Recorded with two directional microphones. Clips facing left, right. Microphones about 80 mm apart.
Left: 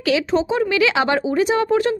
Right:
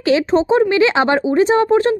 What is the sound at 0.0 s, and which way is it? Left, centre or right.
A woman's voice, right.